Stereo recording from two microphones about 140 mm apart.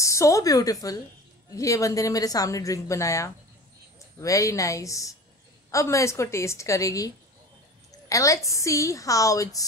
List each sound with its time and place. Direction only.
0.0 s a woman's voice: 20° left (ahead or behind)